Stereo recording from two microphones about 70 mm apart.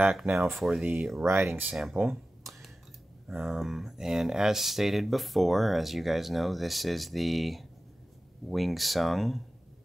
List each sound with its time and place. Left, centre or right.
0.0 s speech: centre
1.2 s speech: right
1.5 s speech: right
2.0 s a sound: centre
3.3 s speech: centre